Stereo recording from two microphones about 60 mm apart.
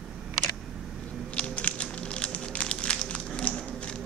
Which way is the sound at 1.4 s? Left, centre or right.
Centre.